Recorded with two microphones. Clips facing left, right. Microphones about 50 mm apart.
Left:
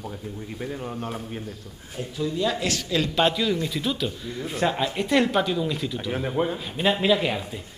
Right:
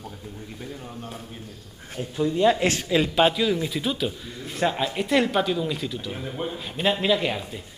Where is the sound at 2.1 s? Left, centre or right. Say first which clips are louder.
Right 5 dB; right.